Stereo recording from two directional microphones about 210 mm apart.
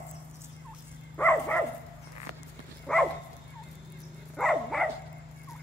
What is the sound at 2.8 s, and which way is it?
Dog, 5° left (ahead or behind).